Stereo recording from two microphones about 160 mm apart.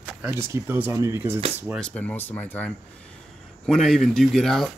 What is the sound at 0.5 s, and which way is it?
Speech, 10° right (ahead or behind).